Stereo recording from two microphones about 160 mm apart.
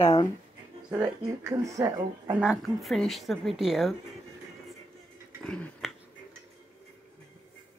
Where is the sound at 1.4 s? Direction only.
20° right (ahead or behind).